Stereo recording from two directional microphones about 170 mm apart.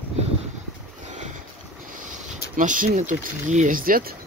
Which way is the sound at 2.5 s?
50° right (ahead or behind).